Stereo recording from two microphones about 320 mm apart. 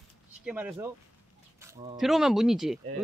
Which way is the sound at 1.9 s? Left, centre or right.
Centre.